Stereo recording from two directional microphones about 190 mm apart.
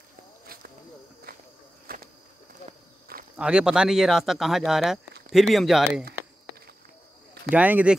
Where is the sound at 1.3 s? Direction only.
50° right (ahead or behind).